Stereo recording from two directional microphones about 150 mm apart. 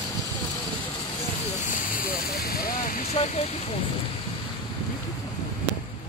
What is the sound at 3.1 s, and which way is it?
Speech, 45° left (ahead or behind).